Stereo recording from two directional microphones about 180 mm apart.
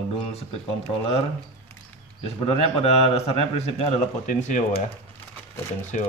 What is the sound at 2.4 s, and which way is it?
A man's voice, 30° left (ahead or behind).